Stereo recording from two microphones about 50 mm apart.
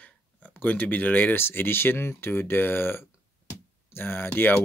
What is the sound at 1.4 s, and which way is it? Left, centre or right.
Speech, left.